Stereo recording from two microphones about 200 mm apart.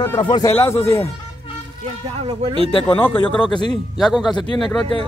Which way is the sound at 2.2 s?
30° right (ahead or behind).